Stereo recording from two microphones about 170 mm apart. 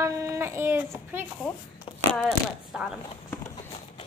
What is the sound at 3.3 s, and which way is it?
Clip-clop, 25° left (ahead or behind).